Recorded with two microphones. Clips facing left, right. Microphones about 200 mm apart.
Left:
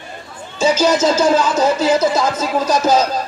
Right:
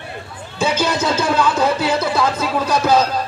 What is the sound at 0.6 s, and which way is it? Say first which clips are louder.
Speech: left 5 dB; 60° right (ahead or behind).